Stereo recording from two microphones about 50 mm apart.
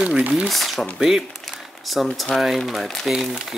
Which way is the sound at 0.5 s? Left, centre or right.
Centre.